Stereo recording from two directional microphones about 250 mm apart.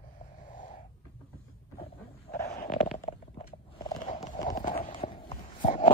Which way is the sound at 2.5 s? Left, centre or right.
Left.